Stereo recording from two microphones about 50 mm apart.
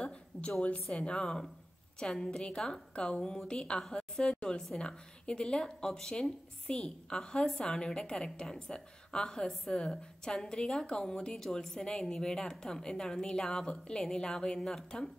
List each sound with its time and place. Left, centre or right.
0.3 s a woman's voice: left
0.9 s a woman's voice: centre